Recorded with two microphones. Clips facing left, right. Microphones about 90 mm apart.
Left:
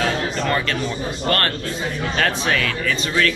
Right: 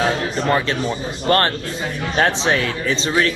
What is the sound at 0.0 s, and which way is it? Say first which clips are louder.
A man's voice: right 2 dB; 25° right (ahead or behind).